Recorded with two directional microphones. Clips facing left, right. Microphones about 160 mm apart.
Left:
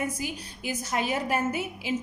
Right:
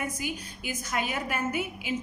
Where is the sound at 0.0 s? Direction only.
35° left (ahead or behind).